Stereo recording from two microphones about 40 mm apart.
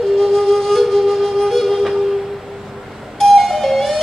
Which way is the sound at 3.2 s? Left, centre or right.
Centre.